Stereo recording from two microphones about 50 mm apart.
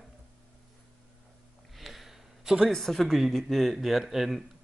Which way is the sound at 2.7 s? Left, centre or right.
Centre.